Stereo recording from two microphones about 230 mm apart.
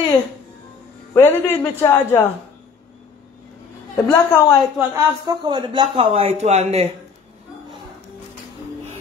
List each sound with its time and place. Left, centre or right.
1.1 s a man's voice: centre
3.9 s a man's voice: centre
4.7 s a man's voice: centre